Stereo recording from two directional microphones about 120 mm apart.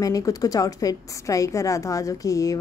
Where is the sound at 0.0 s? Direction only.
30° left (ahead or behind).